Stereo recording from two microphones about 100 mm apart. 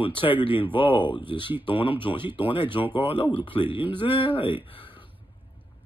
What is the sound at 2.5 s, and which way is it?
Speech, 55° left (ahead or behind).